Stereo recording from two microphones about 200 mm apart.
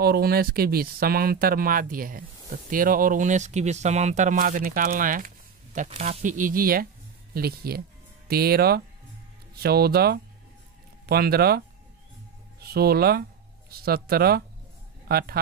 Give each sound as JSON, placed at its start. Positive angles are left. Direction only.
{"t": 0.0, "sound": "a man's voice", "side_deg": -50}